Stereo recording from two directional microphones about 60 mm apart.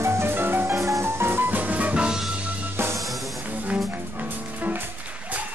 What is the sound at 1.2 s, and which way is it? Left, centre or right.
Music, right.